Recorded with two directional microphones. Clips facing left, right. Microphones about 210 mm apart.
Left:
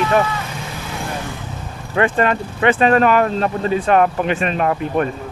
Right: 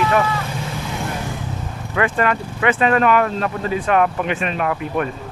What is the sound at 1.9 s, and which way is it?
Speech, 30° left (ahead or behind).